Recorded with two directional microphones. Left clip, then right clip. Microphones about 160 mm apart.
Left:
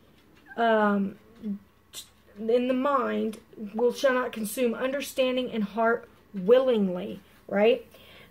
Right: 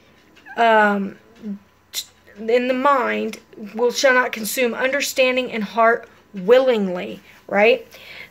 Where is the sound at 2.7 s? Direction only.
Centre (ahead or behind).